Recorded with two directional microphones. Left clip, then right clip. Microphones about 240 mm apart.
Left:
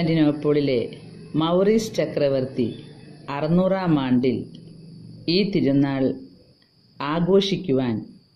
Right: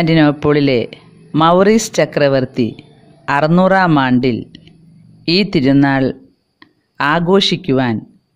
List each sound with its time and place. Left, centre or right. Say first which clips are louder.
0.0 s speech: right 8 dB; right